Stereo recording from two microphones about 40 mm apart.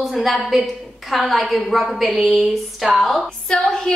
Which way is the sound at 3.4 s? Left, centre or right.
Left.